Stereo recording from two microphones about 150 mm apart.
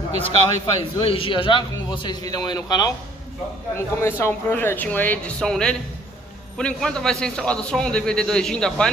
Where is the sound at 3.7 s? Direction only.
15° left (ahead or behind).